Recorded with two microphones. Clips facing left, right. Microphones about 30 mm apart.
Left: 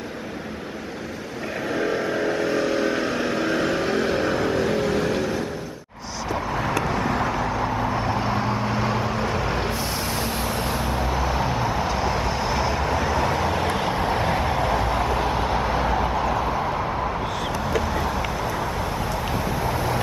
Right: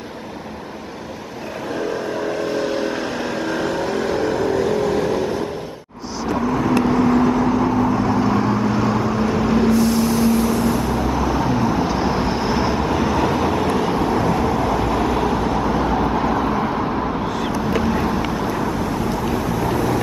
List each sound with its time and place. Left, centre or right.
1.8 s vehicle: centre
2.4 s vehicle: centre
6.8 s vehicle: centre
7.9 s vehicle: left
8.3 s vehicle: centre; by 10.8 s left
11.1 s vehicle: centre
12.1 s vehicle: centre
13.6 s vehicle: left
15.4 s vehicle: centre
15.8 s vehicle: centre